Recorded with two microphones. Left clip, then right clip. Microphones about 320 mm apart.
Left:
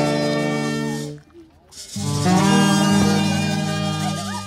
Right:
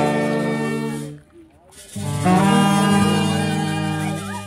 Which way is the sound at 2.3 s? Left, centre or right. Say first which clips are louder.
Right 1 dB; right.